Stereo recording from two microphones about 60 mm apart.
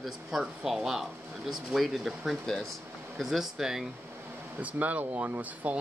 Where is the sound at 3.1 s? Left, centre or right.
Centre.